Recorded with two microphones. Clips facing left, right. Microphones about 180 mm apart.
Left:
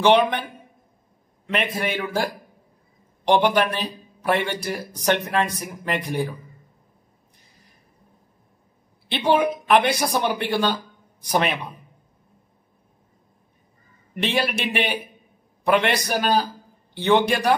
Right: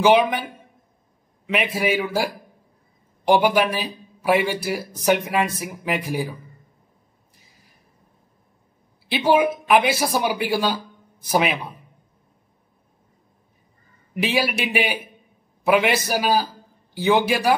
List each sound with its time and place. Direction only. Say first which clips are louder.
0.0 s a man's voice: right 1 dB; 5° right (ahead or behind)
1.5 s a man's voice: right 3 dB; 5° right (ahead or behind)
9.1 s a man's voice: right 2 dB; 5° right (ahead or behind)
14.1 s speech: right 1 dB; 5° right (ahead or behind)